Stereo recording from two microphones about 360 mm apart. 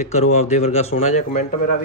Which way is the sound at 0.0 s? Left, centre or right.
Centre.